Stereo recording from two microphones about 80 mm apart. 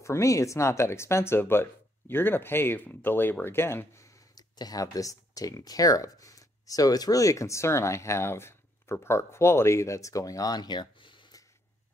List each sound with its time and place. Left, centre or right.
0.0 s speech: left
4.4 s speech: left